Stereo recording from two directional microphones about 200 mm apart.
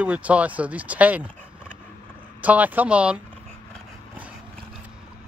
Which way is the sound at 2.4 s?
5° right (ahead or behind).